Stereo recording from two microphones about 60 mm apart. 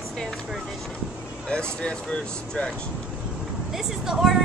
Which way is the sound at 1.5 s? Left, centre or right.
Centre.